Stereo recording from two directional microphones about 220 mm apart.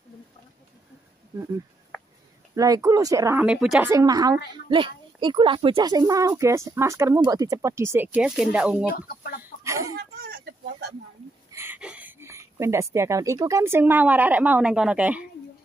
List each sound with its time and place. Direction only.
2.5 s speech: 15° right (ahead or behind)
3.9 s speech: 15° right (ahead or behind)
8.9 s speech: 40° left (ahead or behind)
9.4 s chicken: 15° right (ahead or behind)
10.2 s a sound: 45° right (ahead or behind)
11.5 s speech: 10° right (ahead or behind)